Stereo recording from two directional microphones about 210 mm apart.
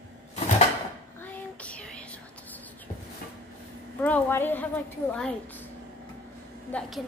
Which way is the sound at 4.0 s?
10° left (ahead or behind).